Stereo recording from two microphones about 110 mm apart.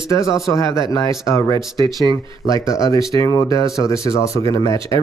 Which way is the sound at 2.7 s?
30° left (ahead or behind).